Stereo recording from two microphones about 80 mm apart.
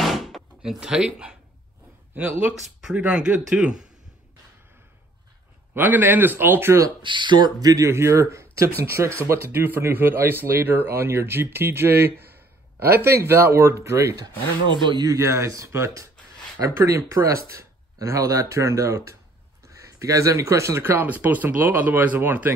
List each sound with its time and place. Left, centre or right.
0.0 s door: centre
2.6 s speech: centre
5.8 s speech: right
7.0 s speech: right
7.6 s speech: right
14.7 s speech: right
15.2 s speech: right